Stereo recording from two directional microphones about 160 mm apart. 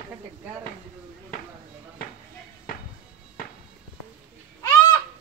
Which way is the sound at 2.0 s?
65° left (ahead or behind).